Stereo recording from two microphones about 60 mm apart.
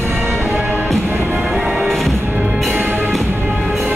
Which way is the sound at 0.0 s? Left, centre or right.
Right.